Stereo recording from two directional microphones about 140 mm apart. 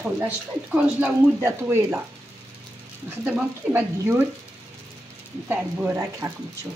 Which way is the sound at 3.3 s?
10° right (ahead or behind).